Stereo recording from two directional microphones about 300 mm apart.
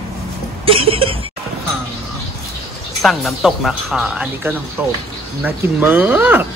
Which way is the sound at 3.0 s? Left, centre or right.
Centre.